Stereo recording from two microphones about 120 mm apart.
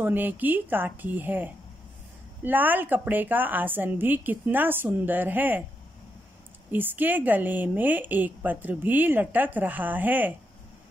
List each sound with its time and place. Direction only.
0.0 s a woman's voice: 15° right (ahead or behind)
6.7 s a woman's voice: 15° right (ahead or behind)